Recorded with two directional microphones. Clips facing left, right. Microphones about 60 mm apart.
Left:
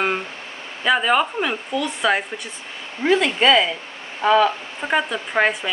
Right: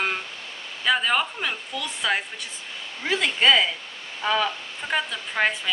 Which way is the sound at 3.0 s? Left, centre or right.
Left.